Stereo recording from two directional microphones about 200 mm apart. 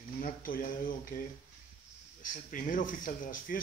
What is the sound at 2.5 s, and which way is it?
Speech, 40° left (ahead or behind).